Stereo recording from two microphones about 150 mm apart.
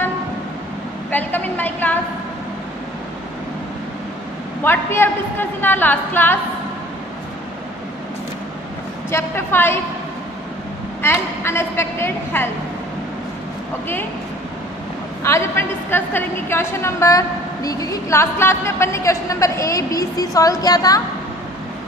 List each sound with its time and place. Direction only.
1.1 s a sound: 10° left (ahead or behind)
4.6 s a woman's voice: 15° left (ahead or behind)
9.1 s a woman's voice: 15° left (ahead or behind)
11.0 s a woman's voice: 15° left (ahead or behind)
15.2 s a woman's voice: 15° left (ahead or behind)